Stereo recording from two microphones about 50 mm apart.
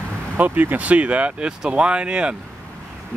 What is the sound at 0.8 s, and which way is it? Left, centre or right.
Speech, right.